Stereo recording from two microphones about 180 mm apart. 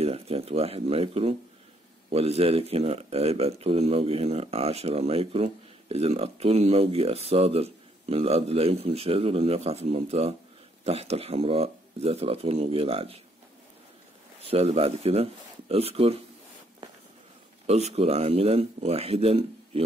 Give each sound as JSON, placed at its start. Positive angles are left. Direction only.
{"t": 0.0, "sound": "speech", "side_deg": -35}
{"t": 14.4, "sound": "speech", "side_deg": -35}
{"t": 17.6, "sound": "speech", "side_deg": -35}